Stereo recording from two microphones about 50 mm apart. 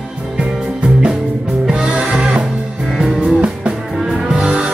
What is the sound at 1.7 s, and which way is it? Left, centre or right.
Music, centre.